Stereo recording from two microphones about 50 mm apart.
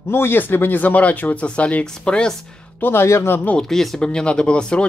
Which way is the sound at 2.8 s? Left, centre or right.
Left.